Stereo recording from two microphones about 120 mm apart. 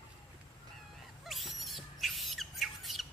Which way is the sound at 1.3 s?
Centre (ahead or behind).